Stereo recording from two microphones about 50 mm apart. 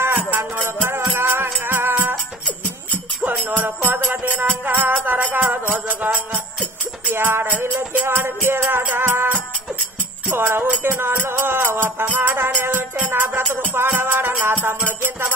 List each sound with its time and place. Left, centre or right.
0.0 s music: right
3.2 s music: right
7.2 s music: right
8.6 s music: right
10.3 s music: right